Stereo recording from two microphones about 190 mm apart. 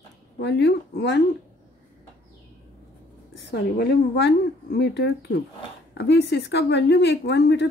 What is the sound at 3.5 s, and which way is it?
A woman's voice, 60° left (ahead or behind).